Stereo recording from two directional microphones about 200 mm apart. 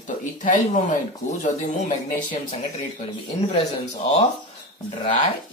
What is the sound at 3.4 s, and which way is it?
Speech, 30° left (ahead or behind).